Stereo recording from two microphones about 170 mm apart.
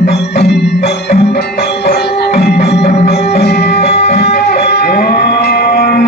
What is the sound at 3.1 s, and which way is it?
Music, 75° left (ahead or behind).